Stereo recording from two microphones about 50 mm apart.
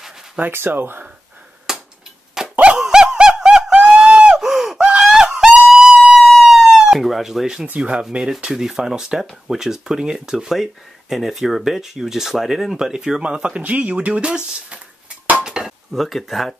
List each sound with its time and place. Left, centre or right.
0.4 s speech: right
1.7 s a sound: centre
2.5 s dog: right
2.8 s snicker: centre
4.4 s gasp: centre
4.7 s screaming: centre
7.6 s speech: right; by 13.2 s centre
13.2 s speech: right
15.4 s dishes: centre
16.1 s speech: centre